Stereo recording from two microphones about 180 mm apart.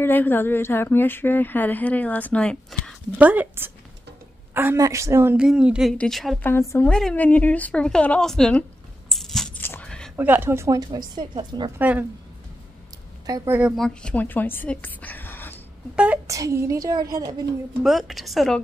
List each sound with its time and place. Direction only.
0.0 s a woman's voice: 10° left (ahead or behind)
3.2 s a woman's voice: 10° right (ahead or behind)
6.5 s a woman's voice: 15° left (ahead or behind)
9.1 s biting: centre (ahead or behind)
9.6 s whispering: 10° left (ahead or behind)
10.1 s a woman's voice: 10° right (ahead or behind)
11.8 s speech: 10° right (ahead or behind)
13.3 s a woman's voice: 10° right (ahead or behind); by 15.5 s 10° left (ahead or behind)
16.3 s a woman's voice: 20° right (ahead or behind)
17.8 s a woman's voice: centre (ahead or behind)